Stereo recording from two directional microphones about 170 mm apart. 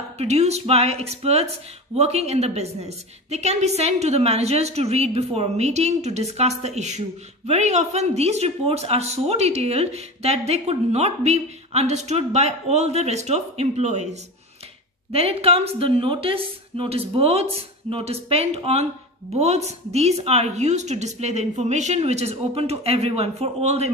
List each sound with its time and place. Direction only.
0.2 s a woman's voice: 40° right (ahead or behind)
15.1 s a woman's voice: 35° right (ahead or behind)